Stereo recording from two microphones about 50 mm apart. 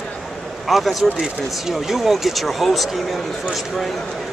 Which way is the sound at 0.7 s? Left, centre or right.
Centre.